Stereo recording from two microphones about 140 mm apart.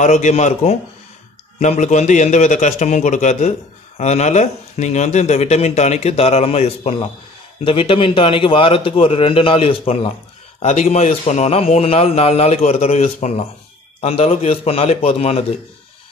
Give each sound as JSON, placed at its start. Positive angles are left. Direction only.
{"t": 0.0, "sound": "a man's voice", "side_deg": 60}